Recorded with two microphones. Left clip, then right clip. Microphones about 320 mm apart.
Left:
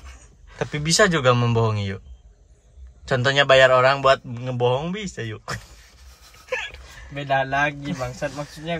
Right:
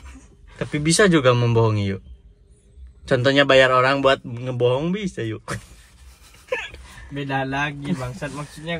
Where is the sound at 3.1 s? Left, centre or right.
Centre.